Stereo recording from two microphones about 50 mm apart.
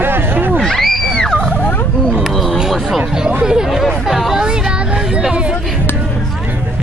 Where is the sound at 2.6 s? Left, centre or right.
Centre.